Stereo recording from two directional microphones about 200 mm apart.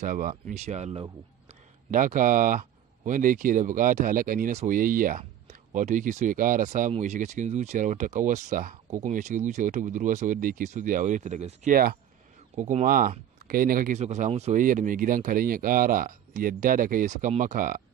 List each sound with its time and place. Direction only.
0.0 s speech: 40° right (ahead or behind)